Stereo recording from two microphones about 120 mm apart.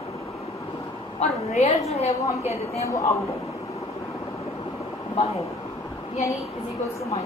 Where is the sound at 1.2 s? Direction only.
65° left (ahead or behind).